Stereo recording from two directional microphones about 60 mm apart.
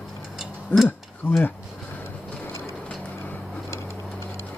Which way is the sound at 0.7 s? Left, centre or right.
Left.